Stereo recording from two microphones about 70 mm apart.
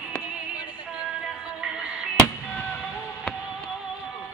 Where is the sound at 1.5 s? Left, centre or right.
Centre.